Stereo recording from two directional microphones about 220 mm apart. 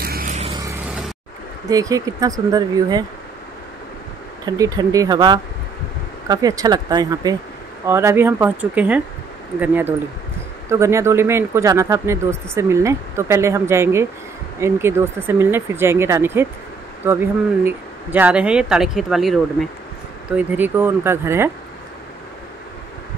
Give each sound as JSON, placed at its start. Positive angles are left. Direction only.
{"t": 0.0, "sound": "vehicle", "side_deg": -40}
{"t": 1.7, "sound": "speech", "side_deg": -15}
{"t": 4.5, "sound": "speech", "side_deg": -15}